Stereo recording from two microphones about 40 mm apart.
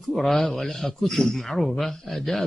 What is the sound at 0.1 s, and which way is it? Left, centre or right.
A man's voice, centre.